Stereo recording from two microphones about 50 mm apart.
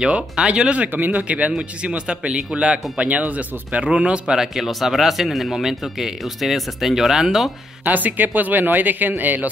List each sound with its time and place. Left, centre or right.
0.0 s a man's voice: right
0.8 s a man's voice: right; by 4.6 s centre
4.6 s speech: centre
7.8 s speech: right